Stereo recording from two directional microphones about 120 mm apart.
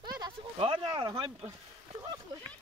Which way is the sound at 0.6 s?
40° right (ahead or behind).